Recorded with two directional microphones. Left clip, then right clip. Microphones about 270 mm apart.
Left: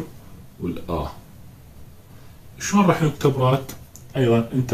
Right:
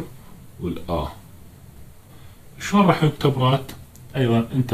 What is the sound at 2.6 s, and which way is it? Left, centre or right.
Speech, centre.